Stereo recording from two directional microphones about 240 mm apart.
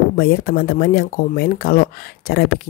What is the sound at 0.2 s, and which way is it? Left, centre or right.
Speech, left.